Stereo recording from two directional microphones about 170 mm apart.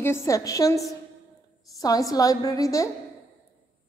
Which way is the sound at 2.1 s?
20° left (ahead or behind).